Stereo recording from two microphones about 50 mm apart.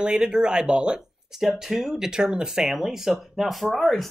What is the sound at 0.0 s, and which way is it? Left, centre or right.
Speech, centre.